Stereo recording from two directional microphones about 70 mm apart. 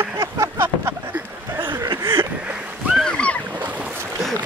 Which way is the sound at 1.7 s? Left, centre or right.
Right.